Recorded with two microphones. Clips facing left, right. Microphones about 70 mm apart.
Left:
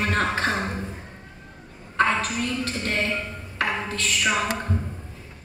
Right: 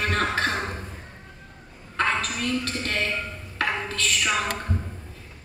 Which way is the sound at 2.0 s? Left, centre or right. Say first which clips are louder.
Left 3 dB; left.